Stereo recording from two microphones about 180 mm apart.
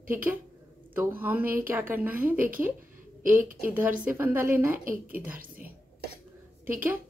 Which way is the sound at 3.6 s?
10° right (ahead or behind).